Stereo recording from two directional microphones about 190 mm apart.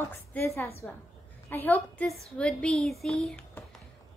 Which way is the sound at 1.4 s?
10° left (ahead or behind).